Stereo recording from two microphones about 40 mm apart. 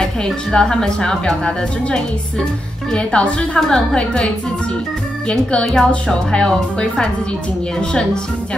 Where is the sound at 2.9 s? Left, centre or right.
Left.